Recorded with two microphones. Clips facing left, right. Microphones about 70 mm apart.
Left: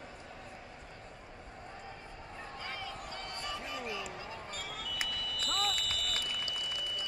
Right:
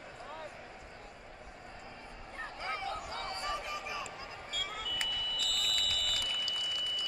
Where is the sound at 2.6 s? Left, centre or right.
Right.